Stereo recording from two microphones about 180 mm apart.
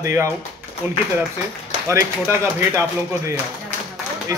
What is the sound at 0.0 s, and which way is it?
Speech, 15° right (ahead or behind).